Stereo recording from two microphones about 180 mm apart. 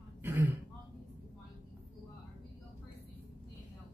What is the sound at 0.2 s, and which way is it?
Throat clearing, 10° right (ahead or behind).